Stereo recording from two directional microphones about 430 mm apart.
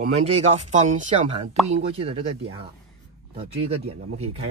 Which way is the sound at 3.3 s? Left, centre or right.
Centre.